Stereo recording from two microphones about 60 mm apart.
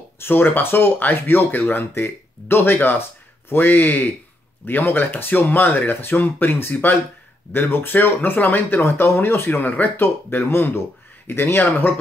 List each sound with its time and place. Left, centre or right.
0.2 s speech: left